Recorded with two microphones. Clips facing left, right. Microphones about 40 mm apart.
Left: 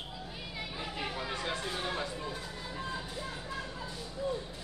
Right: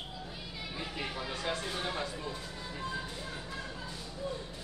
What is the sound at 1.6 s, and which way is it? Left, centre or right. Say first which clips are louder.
Speech: even; centre.